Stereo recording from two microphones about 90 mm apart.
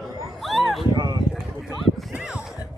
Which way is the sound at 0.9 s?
50° right (ahead or behind).